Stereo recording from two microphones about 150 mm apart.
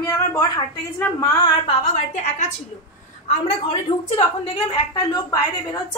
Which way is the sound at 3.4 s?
35° left (ahead or behind).